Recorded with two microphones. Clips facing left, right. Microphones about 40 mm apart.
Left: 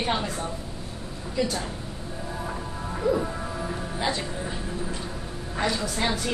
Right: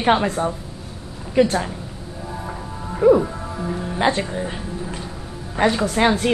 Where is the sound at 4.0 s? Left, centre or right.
Right.